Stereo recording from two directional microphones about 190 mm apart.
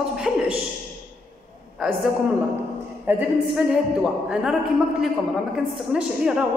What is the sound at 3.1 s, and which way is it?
A woman's voice, 5° right (ahead or behind).